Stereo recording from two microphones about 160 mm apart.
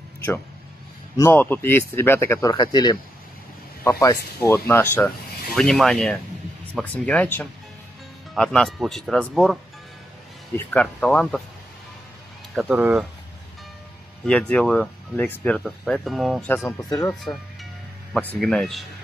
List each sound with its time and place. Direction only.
1.1 s speech: 15° left (ahead or behind)
2.5 s speech: 25° left (ahead or behind); by 9.6 s centre (ahead or behind)
10.7 s speech: 10° left (ahead or behind)
12.5 s speech: 10° right (ahead or behind)
14.2 s speech: 5° left (ahead or behind)
17.1 s speech: centre (ahead or behind)